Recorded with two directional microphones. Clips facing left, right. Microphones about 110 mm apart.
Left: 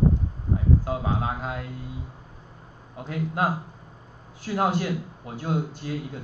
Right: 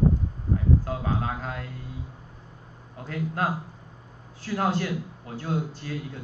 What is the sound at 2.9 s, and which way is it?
A man's voice, 15° left (ahead or behind).